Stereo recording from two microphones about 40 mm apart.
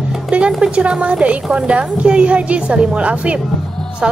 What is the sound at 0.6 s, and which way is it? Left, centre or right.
A woman's voice, right.